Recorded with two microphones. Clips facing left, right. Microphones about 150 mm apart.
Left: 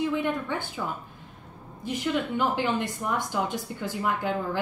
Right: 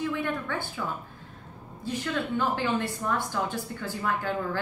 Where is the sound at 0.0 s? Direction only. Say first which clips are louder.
Left 3 dB; 15° left (ahead or behind).